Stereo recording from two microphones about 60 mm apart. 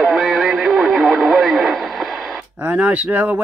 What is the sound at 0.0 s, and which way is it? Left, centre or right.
Radio, centre.